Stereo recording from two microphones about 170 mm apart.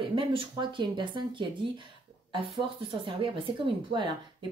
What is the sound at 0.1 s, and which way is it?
Speech, 30° right (ahead or behind).